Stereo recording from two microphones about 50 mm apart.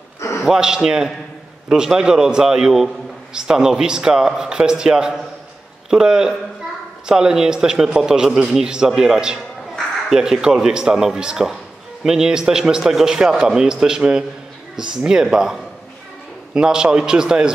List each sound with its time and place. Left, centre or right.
0.5 s a man's voice: centre